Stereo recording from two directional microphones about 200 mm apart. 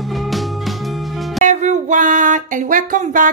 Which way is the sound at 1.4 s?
35° right (ahead or behind).